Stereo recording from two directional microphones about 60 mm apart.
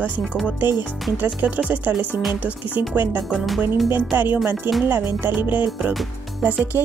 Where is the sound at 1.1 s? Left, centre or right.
Right.